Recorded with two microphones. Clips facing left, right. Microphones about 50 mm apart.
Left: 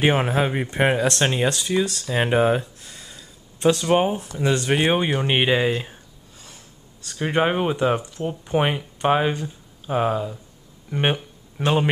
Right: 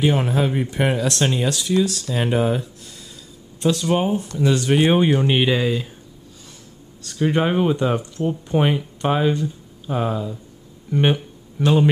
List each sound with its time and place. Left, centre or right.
0.2 s speech: left
4.7 s speech: centre
5.2 s speech: left
7.2 s speech: centre